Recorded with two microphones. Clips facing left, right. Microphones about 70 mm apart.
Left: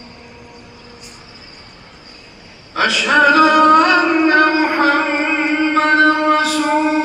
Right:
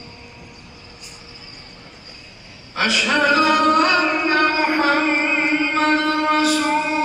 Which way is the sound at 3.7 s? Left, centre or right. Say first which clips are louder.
Left 5 dB; left.